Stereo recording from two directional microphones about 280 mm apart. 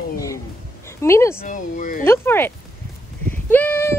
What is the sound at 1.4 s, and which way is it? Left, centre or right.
Speech, left.